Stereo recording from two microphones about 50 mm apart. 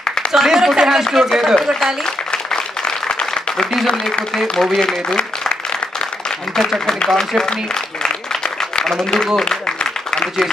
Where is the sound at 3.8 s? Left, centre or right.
Centre.